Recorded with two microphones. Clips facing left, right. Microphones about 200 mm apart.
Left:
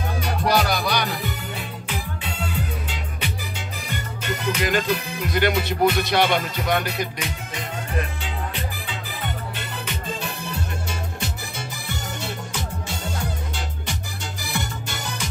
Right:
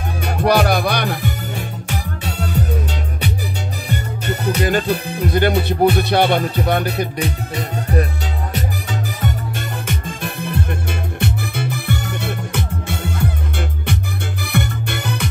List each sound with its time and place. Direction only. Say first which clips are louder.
0.2 s music: right 6 dB; 55° right (ahead or behind); by 3.3 s 40° right (ahead or behind)
4.3 s music: right 5 dB; 35° right (ahead or behind)
9.2 s music: right 7 dB; 50° right (ahead or behind)
14.4 s music: right 7 dB; 60° right (ahead or behind)